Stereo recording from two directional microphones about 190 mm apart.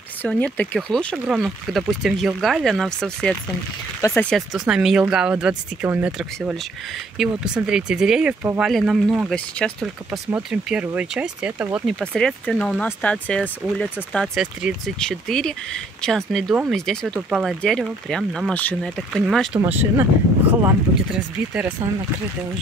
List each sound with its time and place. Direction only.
0.2 s speech: 10° left (ahead or behind); by 11.9 s 5° right (ahead or behind)
12.0 s speech: 5° left (ahead or behind)
20.6 s speech: 10° right (ahead or behind)